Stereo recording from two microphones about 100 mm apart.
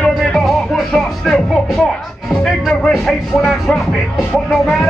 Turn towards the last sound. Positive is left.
turn(degrees=0)  # may be behind; listen again after turning